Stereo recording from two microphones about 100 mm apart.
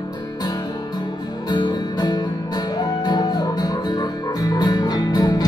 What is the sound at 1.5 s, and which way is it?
Music, 45° left (ahead or behind).